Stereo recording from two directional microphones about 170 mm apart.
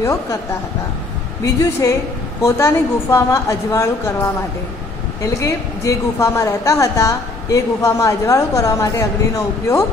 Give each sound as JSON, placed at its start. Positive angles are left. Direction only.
{"t": 0.0, "sound": "a woman's voice", "side_deg": 20}
{"t": 1.4, "sound": "a woman's voice", "side_deg": 20}
{"t": 5.4, "sound": "a woman's voice", "side_deg": 15}